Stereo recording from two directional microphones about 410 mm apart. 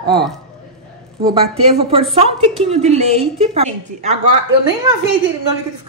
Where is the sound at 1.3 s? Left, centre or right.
Centre.